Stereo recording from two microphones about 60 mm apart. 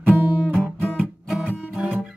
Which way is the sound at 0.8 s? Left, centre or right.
Centre.